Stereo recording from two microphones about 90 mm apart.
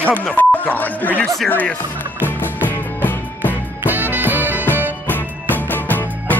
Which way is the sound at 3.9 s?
20° right (ahead or behind).